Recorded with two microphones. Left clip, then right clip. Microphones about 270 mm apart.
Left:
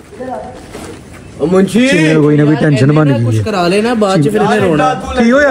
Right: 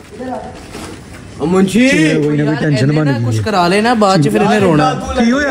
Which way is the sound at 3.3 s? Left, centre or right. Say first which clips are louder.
Even; centre.